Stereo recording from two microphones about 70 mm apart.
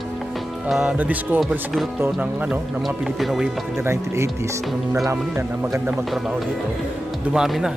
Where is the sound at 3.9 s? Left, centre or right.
Right.